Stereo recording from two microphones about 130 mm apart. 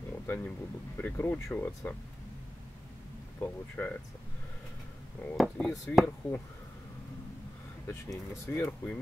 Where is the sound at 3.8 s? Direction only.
20° left (ahead or behind).